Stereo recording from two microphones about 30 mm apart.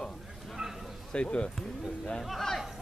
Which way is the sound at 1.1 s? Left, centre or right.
Left.